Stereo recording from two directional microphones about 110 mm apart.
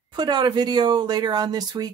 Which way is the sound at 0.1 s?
40° right (ahead or behind).